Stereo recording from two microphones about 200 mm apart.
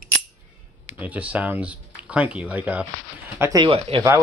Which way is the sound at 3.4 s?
15° right (ahead or behind).